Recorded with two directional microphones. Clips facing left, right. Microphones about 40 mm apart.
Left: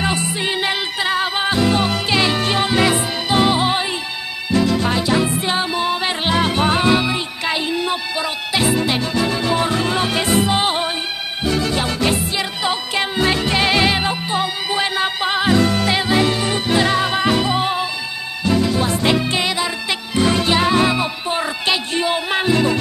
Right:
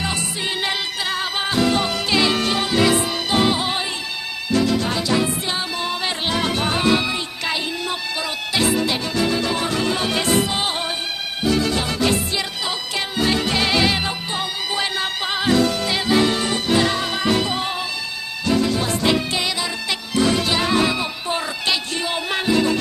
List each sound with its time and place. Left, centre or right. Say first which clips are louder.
0.0 s music: left 4 dB; left
4.8 s music: left 3 dB; left
7.0 s music: left 3 dB; centre